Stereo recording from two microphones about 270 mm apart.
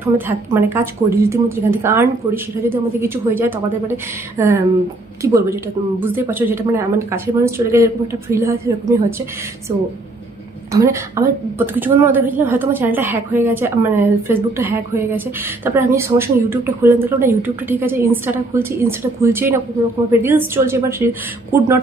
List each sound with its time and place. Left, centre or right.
0.0 s a woman's voice: centre
10.7 s a woman's voice: centre